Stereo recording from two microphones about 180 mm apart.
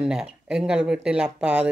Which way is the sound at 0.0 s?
5° right (ahead or behind).